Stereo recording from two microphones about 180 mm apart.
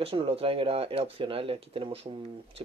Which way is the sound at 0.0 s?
30° right (ahead or behind).